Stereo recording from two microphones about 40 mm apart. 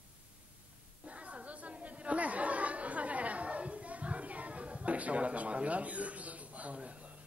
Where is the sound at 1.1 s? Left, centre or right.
Right.